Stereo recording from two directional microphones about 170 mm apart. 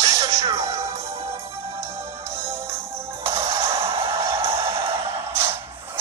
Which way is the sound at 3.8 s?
35° right (ahead or behind).